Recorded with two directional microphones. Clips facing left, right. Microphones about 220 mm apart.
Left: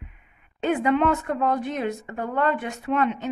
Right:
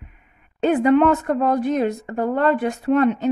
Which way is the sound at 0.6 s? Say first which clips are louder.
Right 6 dB; 40° right (ahead or behind).